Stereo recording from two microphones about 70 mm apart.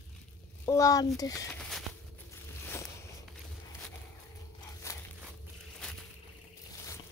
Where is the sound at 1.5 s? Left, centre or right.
Centre.